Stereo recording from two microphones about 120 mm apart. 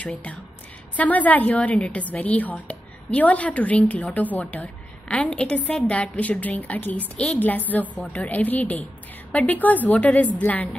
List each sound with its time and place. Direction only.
0.0 s a woman's voice: 10° left (ahead or behind)